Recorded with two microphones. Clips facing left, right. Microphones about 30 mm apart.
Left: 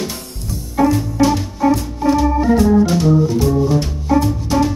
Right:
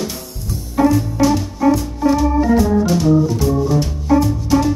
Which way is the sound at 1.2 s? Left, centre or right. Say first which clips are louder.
Left 1 dB; centre.